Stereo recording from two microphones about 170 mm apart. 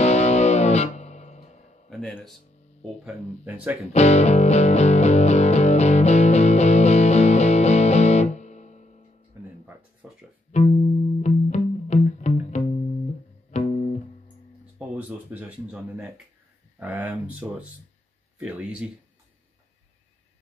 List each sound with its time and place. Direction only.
0.0 s music: 40° left (ahead or behind)
1.9 s music: centre (ahead or behind)
3.4 s speech: 10° right (ahead or behind)
3.9 s music: 40° left (ahead or behind)
10.0 s music: centre (ahead or behind)
10.5 s music: 40° left (ahead or behind)
14.8 s a sound: 10° right (ahead or behind)
16.8 s speech: 10° right (ahead or behind)